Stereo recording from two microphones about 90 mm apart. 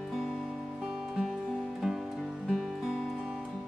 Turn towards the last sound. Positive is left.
turn(degrees=0)  # may be behind; listen again after turning